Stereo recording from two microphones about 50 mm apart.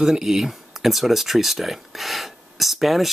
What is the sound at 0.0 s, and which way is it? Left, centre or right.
Speech, centre.